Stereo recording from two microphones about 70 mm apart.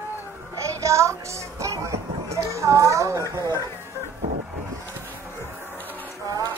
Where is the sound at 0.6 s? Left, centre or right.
Right.